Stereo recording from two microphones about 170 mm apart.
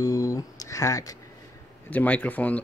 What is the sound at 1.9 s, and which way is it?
Speech, 10° left (ahead or behind).